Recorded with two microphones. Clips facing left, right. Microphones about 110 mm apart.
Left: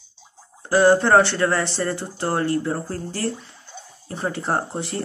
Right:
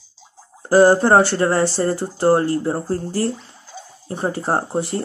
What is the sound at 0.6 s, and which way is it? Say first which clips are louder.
Speech: right 3 dB; 35° right (ahead or behind).